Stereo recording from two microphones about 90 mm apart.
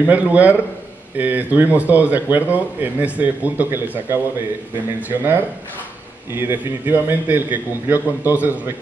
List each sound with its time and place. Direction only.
0.0 s a man's voice: 15° right (ahead or behind)